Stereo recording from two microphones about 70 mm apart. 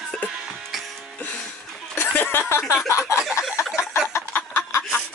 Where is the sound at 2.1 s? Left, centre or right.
Left.